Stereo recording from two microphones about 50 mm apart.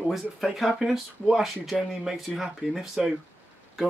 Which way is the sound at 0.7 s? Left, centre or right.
Centre.